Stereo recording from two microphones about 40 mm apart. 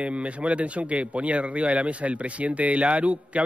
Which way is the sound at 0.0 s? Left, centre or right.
Right.